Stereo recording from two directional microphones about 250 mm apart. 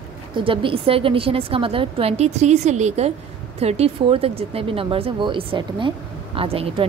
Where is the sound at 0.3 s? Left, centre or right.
Centre.